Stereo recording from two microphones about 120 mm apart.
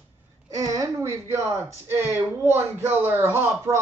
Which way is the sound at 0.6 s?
30° right (ahead or behind).